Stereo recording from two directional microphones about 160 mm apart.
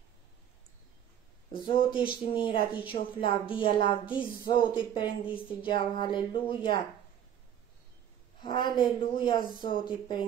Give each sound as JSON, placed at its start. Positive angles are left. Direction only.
{"t": 1.5, "sound": "a woman's voice", "side_deg": 30}
{"t": 8.4, "sound": "a woman's voice", "side_deg": 25}